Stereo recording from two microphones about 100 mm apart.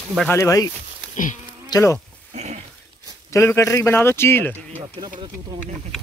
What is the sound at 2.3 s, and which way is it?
Dog, 90° right.